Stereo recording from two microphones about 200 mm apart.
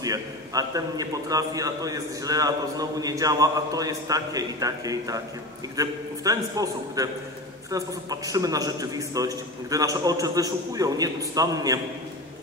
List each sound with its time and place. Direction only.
0.0 s a man's voice: 20° right (ahead or behind)